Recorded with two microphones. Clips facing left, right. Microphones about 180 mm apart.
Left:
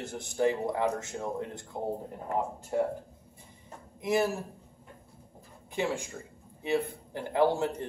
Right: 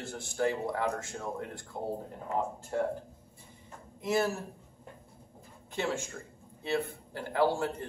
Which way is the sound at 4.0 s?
15° left (ahead or behind).